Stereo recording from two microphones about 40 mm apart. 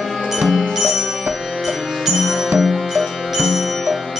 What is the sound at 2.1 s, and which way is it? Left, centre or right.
Music, centre.